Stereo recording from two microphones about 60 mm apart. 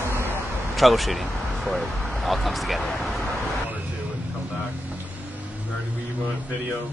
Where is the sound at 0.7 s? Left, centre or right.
Centre.